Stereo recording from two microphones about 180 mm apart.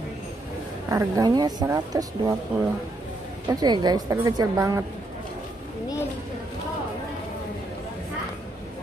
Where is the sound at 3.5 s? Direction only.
20° right (ahead or behind).